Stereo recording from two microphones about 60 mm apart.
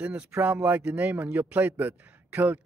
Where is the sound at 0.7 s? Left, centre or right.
Right.